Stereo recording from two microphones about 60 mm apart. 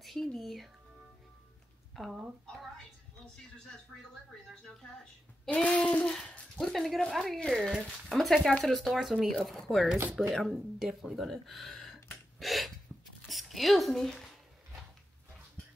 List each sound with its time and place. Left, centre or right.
0.0 s speech: centre
2.0 s speech: centre
5.5 s child singing: left
6.6 s speech: centre